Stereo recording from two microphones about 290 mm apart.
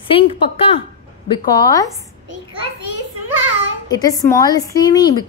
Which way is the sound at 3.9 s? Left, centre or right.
Centre.